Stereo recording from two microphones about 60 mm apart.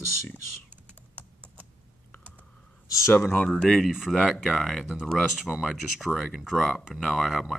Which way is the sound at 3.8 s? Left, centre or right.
Centre.